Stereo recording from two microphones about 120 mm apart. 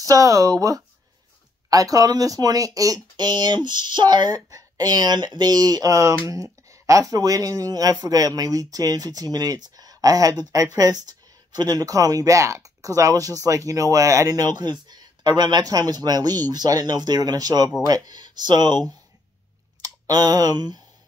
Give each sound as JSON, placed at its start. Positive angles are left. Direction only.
{"t": 0.0, "sound": "speech", "side_deg": -25}